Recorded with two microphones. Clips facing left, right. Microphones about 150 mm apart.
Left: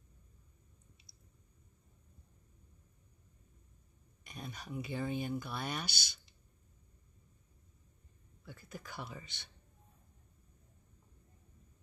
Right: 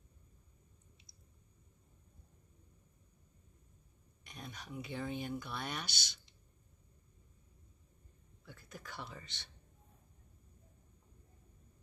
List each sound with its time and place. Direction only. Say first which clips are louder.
4.2 s speech: left 3 dB; 5° left (ahead or behind)
8.5 s speech: left 2 dB; 5° left (ahead or behind)